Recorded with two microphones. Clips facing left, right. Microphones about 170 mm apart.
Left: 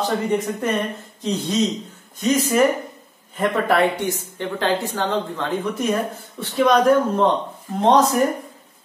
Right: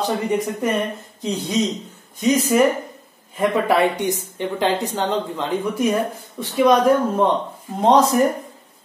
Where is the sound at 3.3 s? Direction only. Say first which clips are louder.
Right 1 dB; 15° right (ahead or behind).